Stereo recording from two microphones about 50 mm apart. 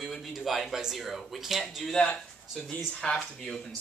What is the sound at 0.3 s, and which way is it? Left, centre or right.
Speech, centre.